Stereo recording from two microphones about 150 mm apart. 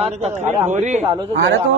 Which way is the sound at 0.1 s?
50° right (ahead or behind).